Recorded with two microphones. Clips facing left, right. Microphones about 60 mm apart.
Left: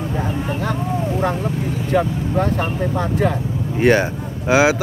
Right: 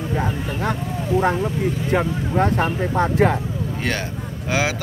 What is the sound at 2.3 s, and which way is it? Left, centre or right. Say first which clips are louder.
Speech: right 1 dB; right.